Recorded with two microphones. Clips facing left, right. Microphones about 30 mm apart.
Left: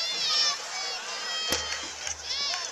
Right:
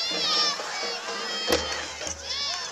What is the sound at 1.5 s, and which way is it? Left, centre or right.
Music, right.